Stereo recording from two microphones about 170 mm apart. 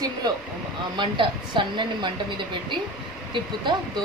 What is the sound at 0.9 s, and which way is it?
Speech, 25° right (ahead or behind).